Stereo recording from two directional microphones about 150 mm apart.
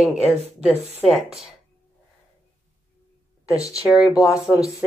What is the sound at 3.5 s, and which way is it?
Speech, 25° left (ahead or behind).